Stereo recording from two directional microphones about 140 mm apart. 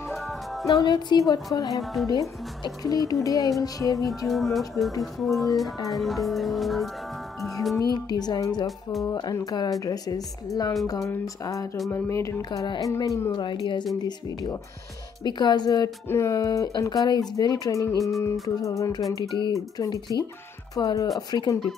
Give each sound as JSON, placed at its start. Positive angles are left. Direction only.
{"t": 0.2, "sound": "music", "side_deg": 0}
{"t": 0.7, "sound": "speech", "side_deg": 30}
{"t": 4.3, "sound": "speech", "side_deg": 0}
{"t": 7.9, "sound": "speech", "side_deg": 30}
{"t": 12.4, "sound": "a woman's voice", "side_deg": 35}